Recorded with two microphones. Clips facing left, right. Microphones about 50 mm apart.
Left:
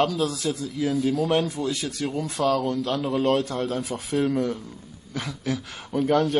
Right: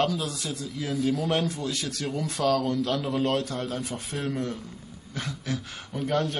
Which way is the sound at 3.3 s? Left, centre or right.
Left.